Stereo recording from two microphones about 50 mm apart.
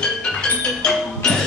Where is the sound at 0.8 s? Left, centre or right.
Centre.